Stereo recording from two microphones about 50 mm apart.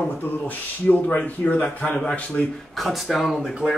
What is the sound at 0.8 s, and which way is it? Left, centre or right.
Speech, left.